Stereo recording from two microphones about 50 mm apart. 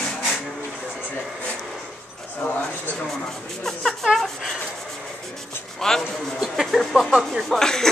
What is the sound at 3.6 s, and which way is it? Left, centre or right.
Speech, centre.